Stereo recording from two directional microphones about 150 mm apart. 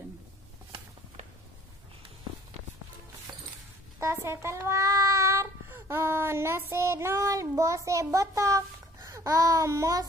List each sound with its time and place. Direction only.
4.0 s a child's voice: 20° right (ahead or behind)